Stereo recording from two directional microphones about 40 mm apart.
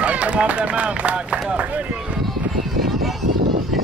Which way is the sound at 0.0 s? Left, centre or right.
Right.